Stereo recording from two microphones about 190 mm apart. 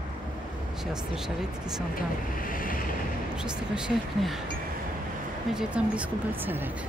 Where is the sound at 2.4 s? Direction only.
45° left (ahead or behind).